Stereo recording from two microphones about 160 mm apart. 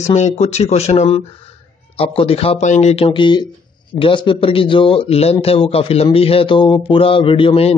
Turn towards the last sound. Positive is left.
turn(degrees=35)  # may be behind; listen again after turning